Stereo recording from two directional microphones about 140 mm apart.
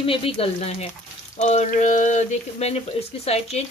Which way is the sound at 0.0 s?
40° left (ahead or behind).